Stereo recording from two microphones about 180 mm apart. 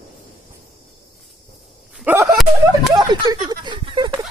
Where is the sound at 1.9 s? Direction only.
10° right (ahead or behind).